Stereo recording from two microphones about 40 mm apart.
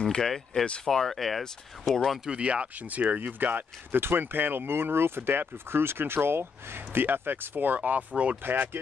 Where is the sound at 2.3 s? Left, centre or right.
Right.